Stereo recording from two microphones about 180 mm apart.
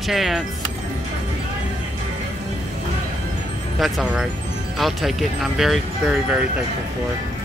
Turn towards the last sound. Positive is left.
turn(degrees=-5)  # may be behind; listen again after turning